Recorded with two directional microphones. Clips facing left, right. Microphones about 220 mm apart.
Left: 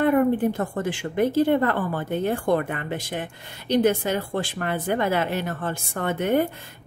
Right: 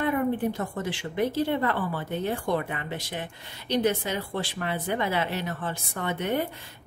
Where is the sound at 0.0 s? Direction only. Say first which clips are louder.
Left 6 dB; 50° left (ahead or behind).